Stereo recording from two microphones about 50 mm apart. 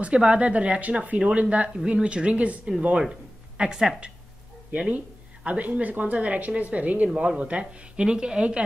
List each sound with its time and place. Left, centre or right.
0.0 s a woman's voice: right